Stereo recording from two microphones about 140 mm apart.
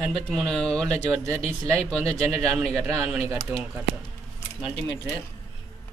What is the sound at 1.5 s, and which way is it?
Speech, 15° right (ahead or behind).